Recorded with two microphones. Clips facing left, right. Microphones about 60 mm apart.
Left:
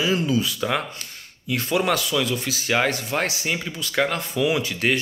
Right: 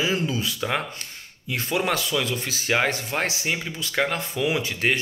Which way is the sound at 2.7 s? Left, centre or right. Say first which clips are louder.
Left 2 dB; right.